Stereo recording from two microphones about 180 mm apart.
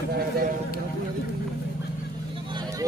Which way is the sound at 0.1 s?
55° right (ahead or behind).